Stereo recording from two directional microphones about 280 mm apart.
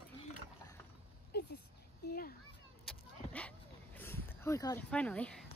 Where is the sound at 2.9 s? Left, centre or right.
Centre.